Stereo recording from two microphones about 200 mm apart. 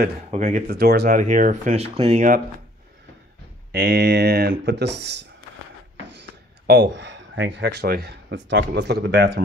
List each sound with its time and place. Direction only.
0.3 s speech: 35° right (ahead or behind)
0.7 s speech: 50° right (ahead or behind)
3.7 s speech: 55° right (ahead or behind)
6.7 s speech: 60° right (ahead or behind)